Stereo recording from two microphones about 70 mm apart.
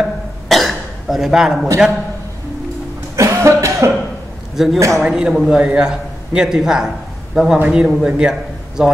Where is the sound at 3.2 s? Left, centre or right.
Right.